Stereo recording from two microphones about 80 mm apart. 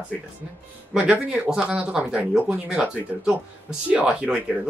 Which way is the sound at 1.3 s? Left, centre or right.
Centre.